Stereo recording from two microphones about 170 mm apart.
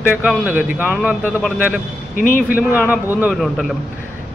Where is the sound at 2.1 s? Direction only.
50° left (ahead or behind).